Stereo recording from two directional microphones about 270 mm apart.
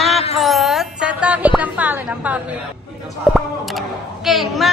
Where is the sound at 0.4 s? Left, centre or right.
Centre.